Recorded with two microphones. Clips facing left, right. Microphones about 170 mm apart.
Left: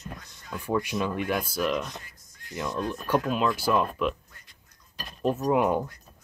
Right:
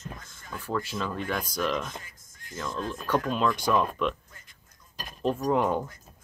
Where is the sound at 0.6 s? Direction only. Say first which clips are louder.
Left 4 dB; 15° left (ahead or behind); by 2.0 s centre (ahead or behind).